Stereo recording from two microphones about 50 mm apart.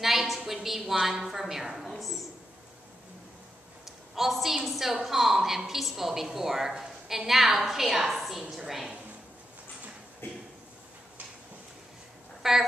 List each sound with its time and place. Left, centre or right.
0.0 s a woman's voice: centre
3.8 s a woman's voice: centre
10.2 s a sound: left
12.4 s speech: centre